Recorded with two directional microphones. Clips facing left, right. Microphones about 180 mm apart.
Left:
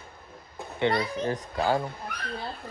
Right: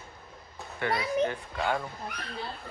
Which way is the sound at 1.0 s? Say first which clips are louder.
Right 1 dB; 35° left (ahead or behind).